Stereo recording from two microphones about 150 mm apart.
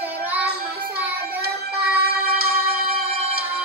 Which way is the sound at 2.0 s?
90° right.